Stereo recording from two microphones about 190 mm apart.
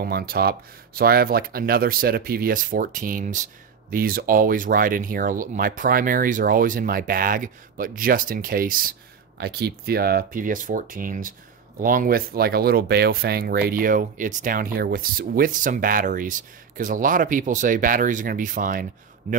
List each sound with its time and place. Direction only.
0.0 s a man's voice: 55° right (ahead or behind); by 19.4 s 35° right (ahead or behind)